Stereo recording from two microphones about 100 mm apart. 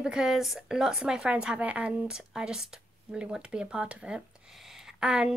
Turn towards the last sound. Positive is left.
turn(degrees=-5)  # may be behind; listen again after turning